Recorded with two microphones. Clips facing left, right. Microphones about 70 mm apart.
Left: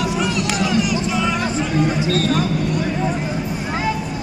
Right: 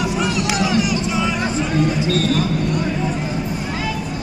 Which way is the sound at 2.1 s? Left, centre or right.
Left.